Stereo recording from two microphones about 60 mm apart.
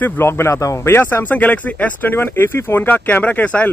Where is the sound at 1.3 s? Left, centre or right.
Left.